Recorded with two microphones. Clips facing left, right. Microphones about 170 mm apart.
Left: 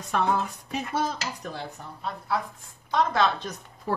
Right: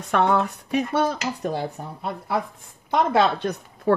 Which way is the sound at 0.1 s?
65° right (ahead or behind).